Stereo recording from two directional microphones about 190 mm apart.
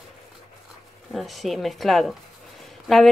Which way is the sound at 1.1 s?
Centre (ahead or behind).